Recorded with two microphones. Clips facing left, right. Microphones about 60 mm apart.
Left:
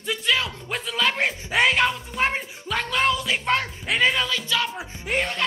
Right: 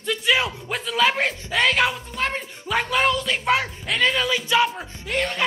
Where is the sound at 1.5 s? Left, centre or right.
Left.